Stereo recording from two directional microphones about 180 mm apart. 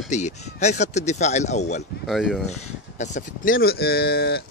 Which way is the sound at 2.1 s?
Centre (ahead or behind).